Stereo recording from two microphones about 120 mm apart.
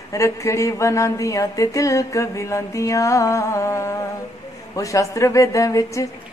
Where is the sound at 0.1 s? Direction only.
25° left (ahead or behind).